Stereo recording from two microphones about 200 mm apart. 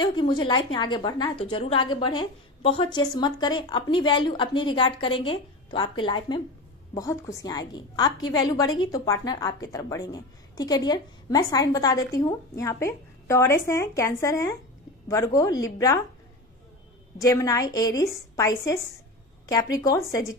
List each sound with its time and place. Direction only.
0.0 s a woman's voice: 25° left (ahead or behind)
17.2 s a woman's voice: 15° left (ahead or behind)